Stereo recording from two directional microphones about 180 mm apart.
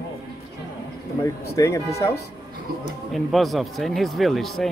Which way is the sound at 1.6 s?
15° left (ahead or behind).